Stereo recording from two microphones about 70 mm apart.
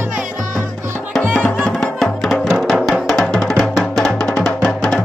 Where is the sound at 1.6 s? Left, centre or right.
Centre.